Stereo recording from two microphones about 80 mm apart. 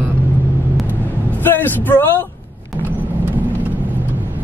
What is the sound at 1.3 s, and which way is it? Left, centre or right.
Speech, left.